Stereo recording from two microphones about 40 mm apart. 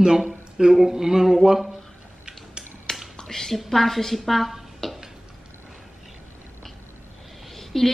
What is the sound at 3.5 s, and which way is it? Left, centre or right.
A woman's voice, centre.